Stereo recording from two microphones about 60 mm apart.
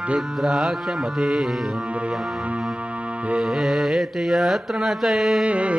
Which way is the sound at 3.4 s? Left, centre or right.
Centre.